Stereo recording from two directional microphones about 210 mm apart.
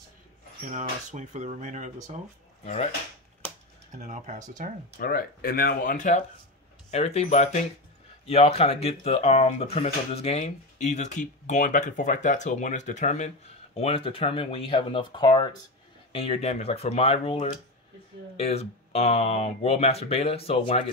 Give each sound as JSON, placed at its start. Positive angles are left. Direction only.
{"t": 0.7, "sound": "speech", "side_deg": -35}
{"t": 2.6, "sound": "speech", "side_deg": 30}
{"t": 4.0, "sound": "speech", "side_deg": -35}
{"t": 4.9, "sound": "speech", "side_deg": 45}